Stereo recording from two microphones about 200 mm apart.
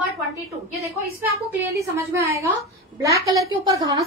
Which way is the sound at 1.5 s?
15° right (ahead or behind).